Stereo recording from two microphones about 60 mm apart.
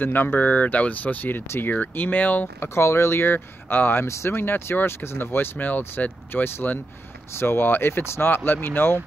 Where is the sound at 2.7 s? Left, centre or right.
Left.